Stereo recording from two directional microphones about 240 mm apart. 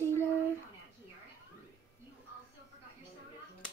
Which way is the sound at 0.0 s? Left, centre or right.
Centre.